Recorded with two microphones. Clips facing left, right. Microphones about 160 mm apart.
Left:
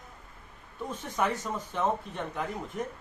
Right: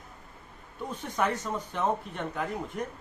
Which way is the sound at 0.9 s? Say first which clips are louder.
Right 1 dB; centre (ahead or behind).